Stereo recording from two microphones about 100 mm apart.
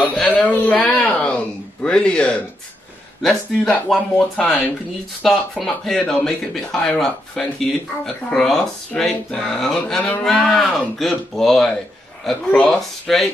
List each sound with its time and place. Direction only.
0.0 s speech: 10° left (ahead or behind)
5.2 s speech: centre (ahead or behind)